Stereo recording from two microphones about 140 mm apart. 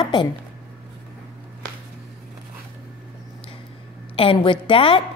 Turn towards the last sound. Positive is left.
turn(degrees=40)  # may be behind; listen again after turning